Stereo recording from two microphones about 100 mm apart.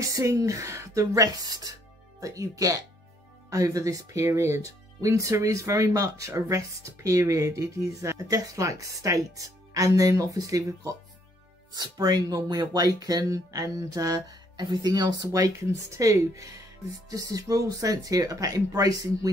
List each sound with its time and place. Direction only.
0.0 s speech: 35° right (ahead or behind)